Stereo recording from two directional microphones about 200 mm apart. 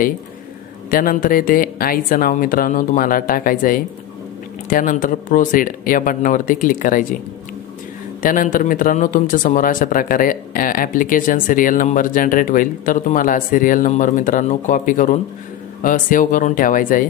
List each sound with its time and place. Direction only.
0.8 s a man's voice: 45° left (ahead or behind)
8.2 s a man's voice: 40° left (ahead or behind)